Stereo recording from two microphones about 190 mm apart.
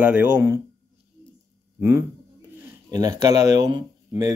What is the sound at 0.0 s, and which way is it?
Speech, 10° right (ahead or behind).